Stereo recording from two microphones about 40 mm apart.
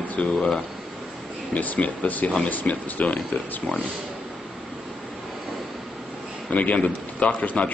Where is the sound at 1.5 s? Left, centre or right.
Left.